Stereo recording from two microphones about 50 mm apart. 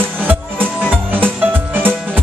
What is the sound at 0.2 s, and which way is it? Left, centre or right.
Music, right.